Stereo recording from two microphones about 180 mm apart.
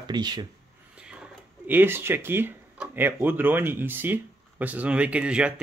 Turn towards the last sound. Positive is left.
turn(degrees=-5)  # may be behind; listen again after turning